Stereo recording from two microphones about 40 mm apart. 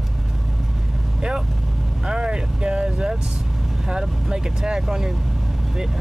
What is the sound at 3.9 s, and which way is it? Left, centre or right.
Speech, centre.